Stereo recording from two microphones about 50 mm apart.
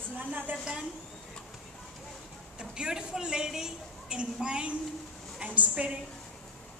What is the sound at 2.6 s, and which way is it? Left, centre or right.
A man's voice, centre.